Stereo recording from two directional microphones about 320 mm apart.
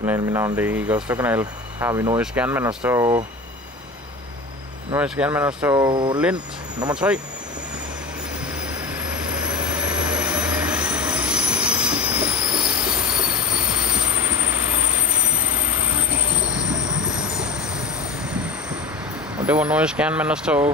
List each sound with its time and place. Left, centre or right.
0.0 s speech: centre
4.9 s speech: centre
6.8 s speech: centre
9.0 s train: centre
19.4 s speech: centre